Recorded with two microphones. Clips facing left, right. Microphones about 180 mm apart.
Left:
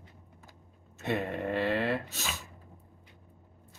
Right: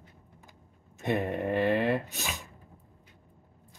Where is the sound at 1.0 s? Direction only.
15° right (ahead or behind).